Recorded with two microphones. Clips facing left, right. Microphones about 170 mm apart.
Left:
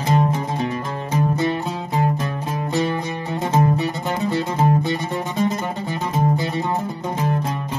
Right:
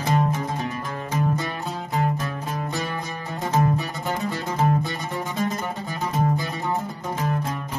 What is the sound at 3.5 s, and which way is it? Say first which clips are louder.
Music: left 3 dB; 25° left (ahead or behind).